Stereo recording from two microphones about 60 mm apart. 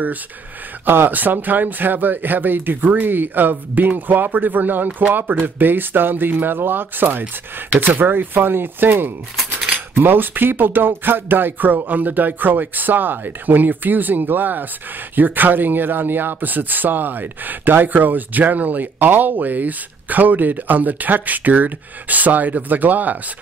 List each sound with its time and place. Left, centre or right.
0.8 s speech: right